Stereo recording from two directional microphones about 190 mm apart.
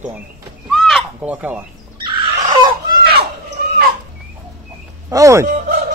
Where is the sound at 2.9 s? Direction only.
55° right (ahead or behind).